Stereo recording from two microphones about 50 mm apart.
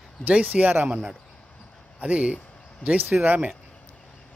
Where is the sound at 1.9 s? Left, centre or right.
Right.